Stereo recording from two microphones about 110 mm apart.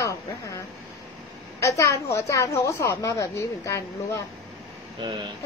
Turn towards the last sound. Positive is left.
turn(degrees=-45)  # may be behind; listen again after turning